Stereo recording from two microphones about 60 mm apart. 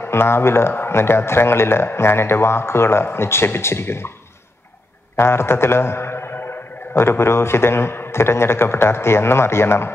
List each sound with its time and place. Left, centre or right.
0.1 s a man's voice: left
5.1 s a man's voice: left